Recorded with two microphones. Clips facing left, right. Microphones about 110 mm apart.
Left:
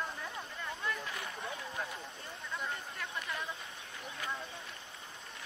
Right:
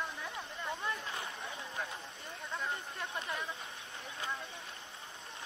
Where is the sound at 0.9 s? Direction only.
25° right (ahead or behind).